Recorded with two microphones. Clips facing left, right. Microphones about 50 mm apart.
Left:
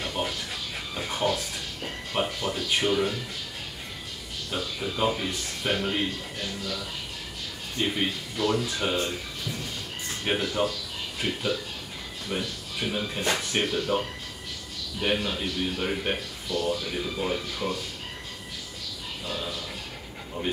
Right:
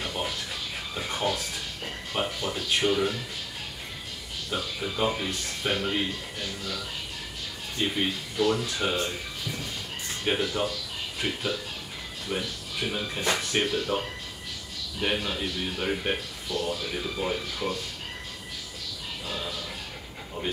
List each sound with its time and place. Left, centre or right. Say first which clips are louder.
0.2 s music: left 3 dB; left
0.9 s a sound: left 2 dB; centre
2.1 s music: left 2 dB; centre
4.5 s a man's voice: even; centre
8.4 s a man's voice: right 1 dB; centre
10.2 s a man's voice: left 1 dB; centre
15.0 s a man's voice: left 1 dB; centre
19.2 s a sound: left 1 dB; centre